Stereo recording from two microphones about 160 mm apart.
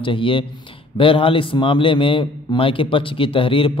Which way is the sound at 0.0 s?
30° left (ahead or behind).